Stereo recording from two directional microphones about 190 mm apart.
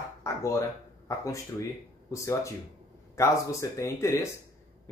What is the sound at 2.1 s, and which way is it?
Speech, 15° left (ahead or behind).